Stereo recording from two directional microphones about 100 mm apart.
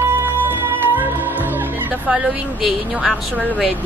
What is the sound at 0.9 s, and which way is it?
Music, 20° right (ahead or behind).